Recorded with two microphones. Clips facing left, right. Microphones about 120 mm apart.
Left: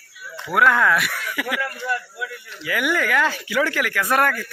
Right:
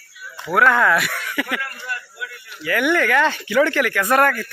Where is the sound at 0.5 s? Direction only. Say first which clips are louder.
Right 2 dB; 5° left (ahead or behind).